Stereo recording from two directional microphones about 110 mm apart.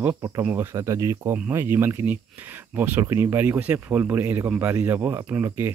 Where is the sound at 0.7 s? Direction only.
25° right (ahead or behind).